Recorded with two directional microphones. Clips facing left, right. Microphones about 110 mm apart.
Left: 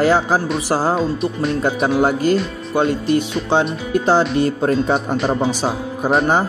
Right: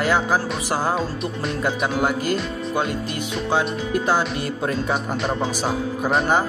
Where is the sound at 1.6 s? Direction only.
35° left (ahead or behind).